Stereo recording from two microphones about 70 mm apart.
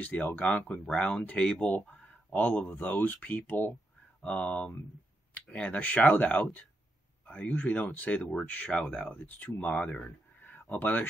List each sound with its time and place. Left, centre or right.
0.0 s speech: left